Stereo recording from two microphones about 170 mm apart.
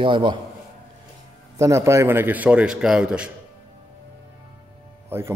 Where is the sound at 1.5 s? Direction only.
15° right (ahead or behind).